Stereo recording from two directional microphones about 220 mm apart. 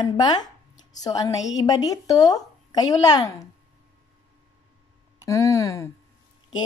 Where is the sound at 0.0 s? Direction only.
20° left (ahead or behind).